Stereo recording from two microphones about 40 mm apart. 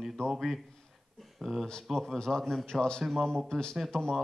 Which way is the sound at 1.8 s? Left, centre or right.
Centre.